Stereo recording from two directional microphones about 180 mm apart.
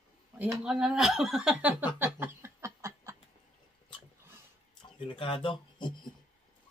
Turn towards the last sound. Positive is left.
turn(degrees=25)  # may be behind; listen again after turning